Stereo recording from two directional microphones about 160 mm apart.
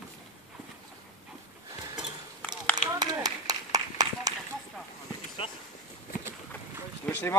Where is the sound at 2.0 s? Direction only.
5° right (ahead or behind).